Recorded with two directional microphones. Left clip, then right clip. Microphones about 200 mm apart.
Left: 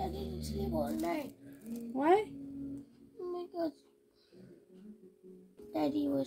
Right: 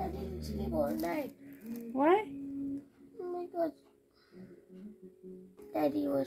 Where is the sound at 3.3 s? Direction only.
5° left (ahead or behind).